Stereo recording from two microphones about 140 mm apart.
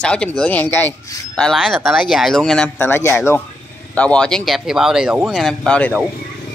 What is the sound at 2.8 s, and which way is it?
A man's voice, 15° left (ahead or behind).